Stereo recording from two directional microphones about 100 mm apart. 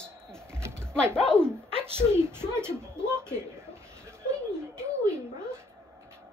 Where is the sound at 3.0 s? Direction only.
25° right (ahead or behind).